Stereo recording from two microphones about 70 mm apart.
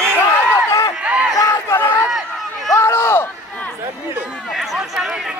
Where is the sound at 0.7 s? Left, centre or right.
Left.